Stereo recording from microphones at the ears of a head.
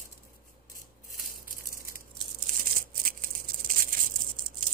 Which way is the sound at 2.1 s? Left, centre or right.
Right.